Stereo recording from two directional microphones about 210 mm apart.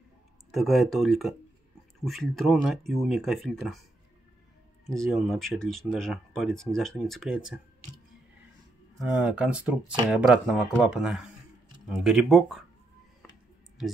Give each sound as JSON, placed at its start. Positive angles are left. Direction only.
{"t": 0.5, "sound": "speech", "side_deg": 0}
{"t": 4.8, "sound": "speech", "side_deg": 0}
{"t": 8.9, "sound": "speech", "side_deg": -5}